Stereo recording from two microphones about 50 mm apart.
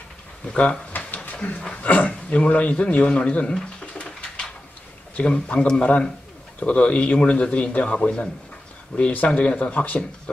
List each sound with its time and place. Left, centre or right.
0.5 s a man's voice: left
0.9 s a sound: left
1.7 s a man's voice: left
5.1 s a man's voice: left